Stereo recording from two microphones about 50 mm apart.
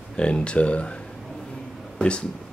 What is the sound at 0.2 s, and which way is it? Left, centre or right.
Speech, left.